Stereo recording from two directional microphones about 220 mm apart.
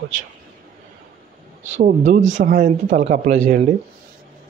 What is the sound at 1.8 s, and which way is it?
Speech, 35° right (ahead or behind).